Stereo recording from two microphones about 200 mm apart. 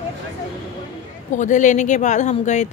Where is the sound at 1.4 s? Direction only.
40° left (ahead or behind).